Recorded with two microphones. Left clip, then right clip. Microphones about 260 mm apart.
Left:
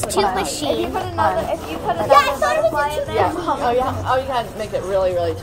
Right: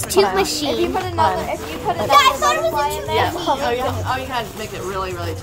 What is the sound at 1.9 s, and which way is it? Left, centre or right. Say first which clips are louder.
Speech: right 1 dB; right.